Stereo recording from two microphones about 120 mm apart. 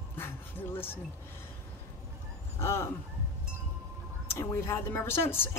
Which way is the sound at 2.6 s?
20° left (ahead or behind).